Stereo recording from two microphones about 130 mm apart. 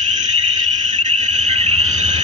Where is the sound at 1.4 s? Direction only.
60° right (ahead or behind).